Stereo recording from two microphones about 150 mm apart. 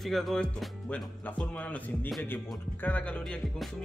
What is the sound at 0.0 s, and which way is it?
Speech, centre (ahead or behind).